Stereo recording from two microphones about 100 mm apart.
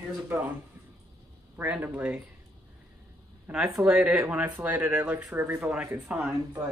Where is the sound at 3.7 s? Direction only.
5° right (ahead or behind).